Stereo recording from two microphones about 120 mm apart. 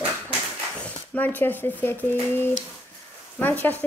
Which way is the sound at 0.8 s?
15° left (ahead or behind).